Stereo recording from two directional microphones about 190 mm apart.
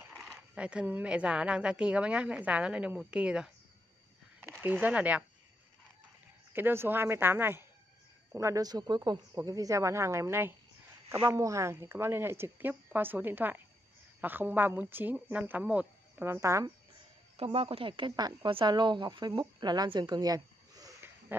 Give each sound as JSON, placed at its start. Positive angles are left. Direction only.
{"t": 0.3, "sound": "speech", "side_deg": -5}
{"t": 6.5, "sound": "speech", "side_deg": -10}
{"t": 17.4, "sound": "speech", "side_deg": -30}